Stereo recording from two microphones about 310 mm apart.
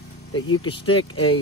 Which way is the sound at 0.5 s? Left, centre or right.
Centre.